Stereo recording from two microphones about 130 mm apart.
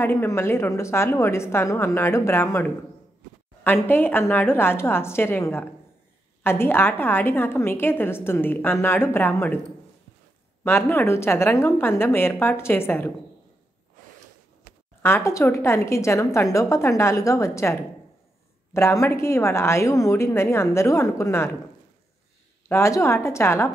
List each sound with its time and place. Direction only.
0.0 s a woman's voice: 20° left (ahead or behind)
10.6 s a woman's voice: 20° left (ahead or behind)
15.0 s a woman's voice: 20° left (ahead or behind)
22.7 s a woman's voice: 20° left (ahead or behind)